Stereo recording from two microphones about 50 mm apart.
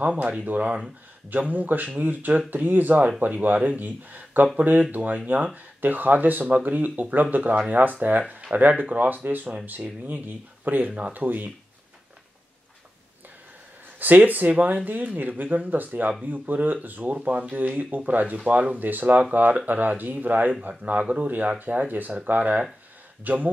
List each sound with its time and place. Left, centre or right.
0.2 s speech: right
10.9 s speech: right
13.9 s speech: right